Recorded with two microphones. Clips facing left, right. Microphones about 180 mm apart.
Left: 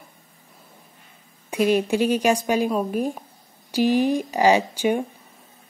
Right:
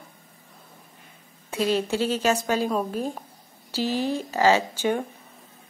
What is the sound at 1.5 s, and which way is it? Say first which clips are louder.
A woman's voice: left 4 dB; 15° left (ahead or behind).